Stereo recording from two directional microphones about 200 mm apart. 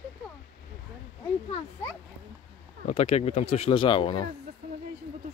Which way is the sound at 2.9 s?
30° left (ahead or behind).